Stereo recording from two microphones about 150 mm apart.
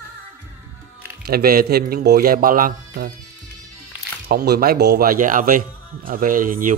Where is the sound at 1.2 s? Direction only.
90° right.